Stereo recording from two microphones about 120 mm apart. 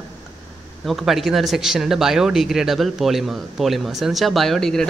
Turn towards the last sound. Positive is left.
turn(degrees=5)  # may be behind; listen again after turning